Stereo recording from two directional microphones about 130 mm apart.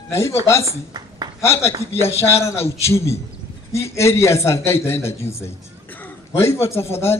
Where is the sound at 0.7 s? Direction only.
30° right (ahead or behind).